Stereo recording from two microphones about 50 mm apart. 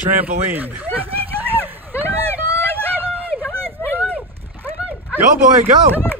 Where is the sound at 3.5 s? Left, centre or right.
Right.